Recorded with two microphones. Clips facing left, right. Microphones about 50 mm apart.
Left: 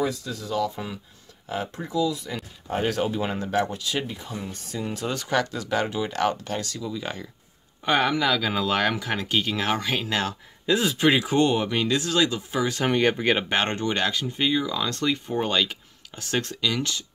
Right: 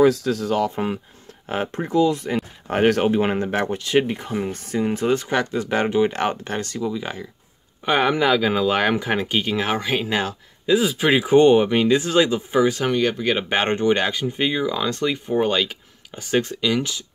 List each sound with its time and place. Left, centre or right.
0.0 s speech: right
0.5 s speech: right
6.9 s speech: centre
8.1 s speech: right
10.7 s speech: centre; by 12.6 s right
12.8 s speech: centre
13.5 s speech: centre